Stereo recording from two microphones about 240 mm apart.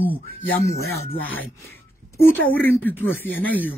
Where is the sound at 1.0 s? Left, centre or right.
Centre.